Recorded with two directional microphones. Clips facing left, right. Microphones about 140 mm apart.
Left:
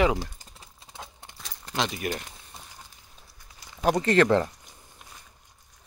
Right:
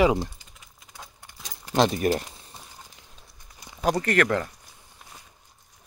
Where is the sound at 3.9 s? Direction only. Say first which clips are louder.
Left 2 dB; 20° left (ahead or behind).